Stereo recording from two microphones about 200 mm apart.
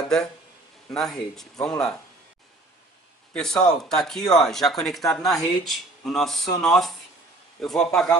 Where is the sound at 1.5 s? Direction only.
20° left (ahead or behind).